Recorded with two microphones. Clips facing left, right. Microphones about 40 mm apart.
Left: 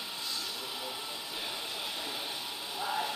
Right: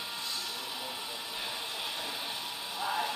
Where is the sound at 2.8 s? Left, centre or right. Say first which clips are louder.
Right 1 dB; centre.